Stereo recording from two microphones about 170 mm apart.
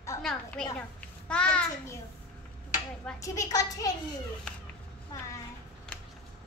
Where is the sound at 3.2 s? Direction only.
20° left (ahead or behind).